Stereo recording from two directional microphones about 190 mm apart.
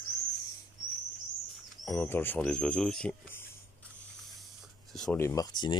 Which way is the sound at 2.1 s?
10° left (ahead or behind).